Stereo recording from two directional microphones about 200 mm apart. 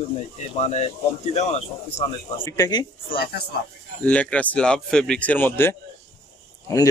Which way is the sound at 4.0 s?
5° left (ahead or behind).